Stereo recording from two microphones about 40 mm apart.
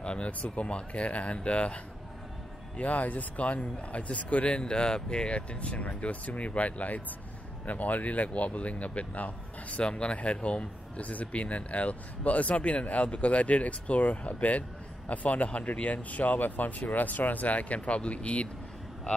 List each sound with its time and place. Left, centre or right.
0.0 s a sound: left
0.3 s speech: left
0.7 s speech: left
2.8 s speech: left
4.5 s speech: left